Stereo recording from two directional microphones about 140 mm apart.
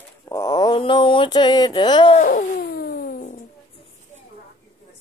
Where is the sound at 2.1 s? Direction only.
65° left (ahead or behind).